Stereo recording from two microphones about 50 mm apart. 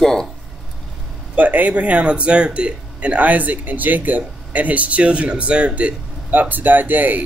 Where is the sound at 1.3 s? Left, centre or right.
Right.